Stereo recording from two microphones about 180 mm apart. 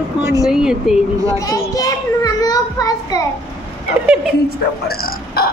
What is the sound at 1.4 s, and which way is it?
A child's voice, 20° left (ahead or behind).